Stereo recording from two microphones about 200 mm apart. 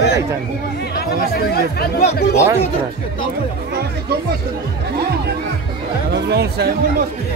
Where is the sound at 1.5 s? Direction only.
50° left (ahead or behind).